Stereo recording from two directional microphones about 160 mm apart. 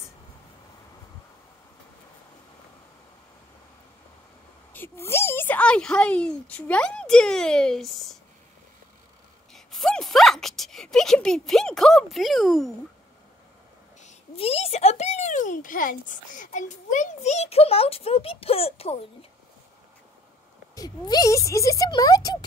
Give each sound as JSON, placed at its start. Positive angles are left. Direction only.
{"t": 4.7, "sound": "a woman's voice", "side_deg": 15}
{"t": 9.5, "sound": "speech", "side_deg": 0}
{"t": 14.0, "sound": "a child's voice", "side_deg": 40}
{"t": 20.7, "sound": "speech", "side_deg": 25}